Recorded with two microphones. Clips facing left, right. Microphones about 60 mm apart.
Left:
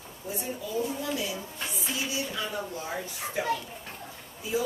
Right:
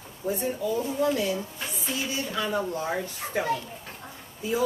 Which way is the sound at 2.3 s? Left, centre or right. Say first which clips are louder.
Right 6 dB; right.